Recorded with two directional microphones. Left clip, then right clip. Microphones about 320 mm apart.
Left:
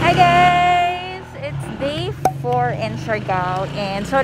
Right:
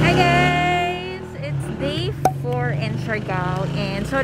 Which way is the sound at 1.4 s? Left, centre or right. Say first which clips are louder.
Left 4 dB; centre.